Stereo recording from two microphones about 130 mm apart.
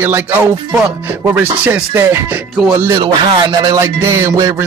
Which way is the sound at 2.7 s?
35° right (ahead or behind).